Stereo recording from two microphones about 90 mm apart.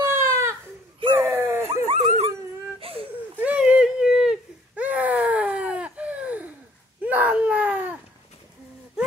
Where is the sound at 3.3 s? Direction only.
15° right (ahead or behind).